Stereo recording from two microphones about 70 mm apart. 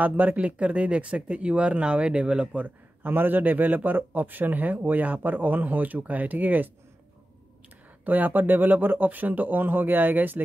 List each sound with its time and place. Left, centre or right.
0.0 s speech: right
8.0 s speech: right